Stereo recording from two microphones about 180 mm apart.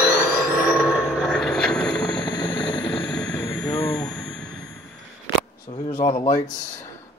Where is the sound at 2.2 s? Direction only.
15° left (ahead or behind).